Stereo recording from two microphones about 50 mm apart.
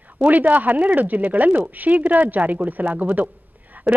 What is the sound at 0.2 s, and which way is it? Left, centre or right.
Speech, right.